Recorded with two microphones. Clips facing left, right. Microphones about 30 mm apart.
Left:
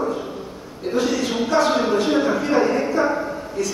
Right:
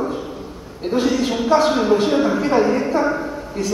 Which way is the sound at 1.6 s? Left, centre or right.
Centre.